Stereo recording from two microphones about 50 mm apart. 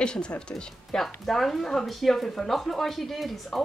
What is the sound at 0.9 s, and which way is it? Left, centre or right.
Speech, centre.